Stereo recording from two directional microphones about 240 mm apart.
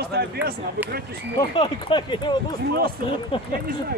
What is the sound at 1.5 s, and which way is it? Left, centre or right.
Speech, centre.